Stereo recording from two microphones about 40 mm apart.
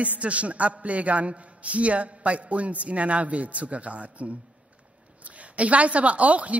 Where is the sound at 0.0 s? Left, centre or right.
Right.